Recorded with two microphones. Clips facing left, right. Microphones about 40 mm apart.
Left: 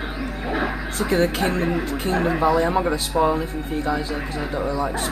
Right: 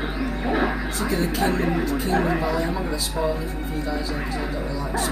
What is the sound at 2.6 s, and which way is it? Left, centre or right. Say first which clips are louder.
Speech: left 6 dB; left.